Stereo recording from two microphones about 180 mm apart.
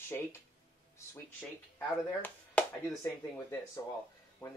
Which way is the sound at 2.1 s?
10° left (ahead or behind).